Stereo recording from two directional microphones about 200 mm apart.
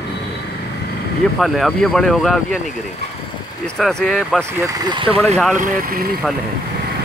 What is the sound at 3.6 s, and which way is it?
Speech, 5° left (ahead or behind).